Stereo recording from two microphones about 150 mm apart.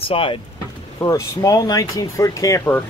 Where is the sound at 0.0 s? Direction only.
35° left (ahead or behind).